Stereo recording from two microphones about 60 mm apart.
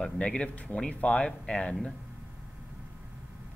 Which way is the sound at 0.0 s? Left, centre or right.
Centre.